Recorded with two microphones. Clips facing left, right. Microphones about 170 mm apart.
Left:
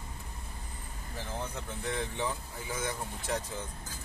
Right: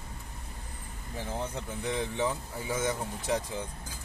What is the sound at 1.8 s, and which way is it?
Speech, 20° right (ahead or behind).